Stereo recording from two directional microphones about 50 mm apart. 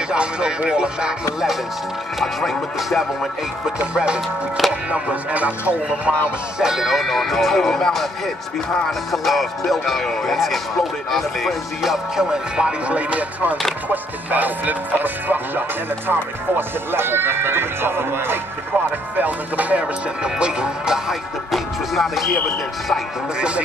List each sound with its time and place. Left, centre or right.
0.1 s speech: centre
2.1 s speech: centre
3.8 s speech: centre
4.6 s speech: centre
4.9 s speech: right
6.6 s speech: centre
9.1 s speech: centre
12.8 s speech: right
13.8 s music: right
16.1 s speech: right
19.1 s music: right
20.2 s speech: centre